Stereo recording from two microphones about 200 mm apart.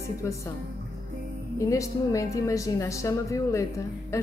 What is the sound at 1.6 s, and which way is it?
A woman's voice, 15° left (ahead or behind).